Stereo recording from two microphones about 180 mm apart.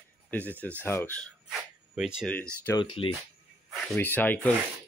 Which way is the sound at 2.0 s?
5° right (ahead or behind).